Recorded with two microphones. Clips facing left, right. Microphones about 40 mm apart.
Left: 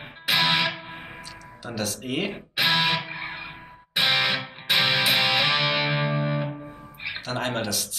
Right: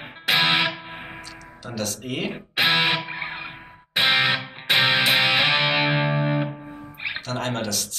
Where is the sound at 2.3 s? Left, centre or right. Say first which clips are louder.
Right 4 dB; centre.